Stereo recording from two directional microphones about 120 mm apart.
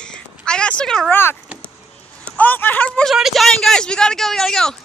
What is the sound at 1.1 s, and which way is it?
A woman's voice, 20° left (ahead or behind).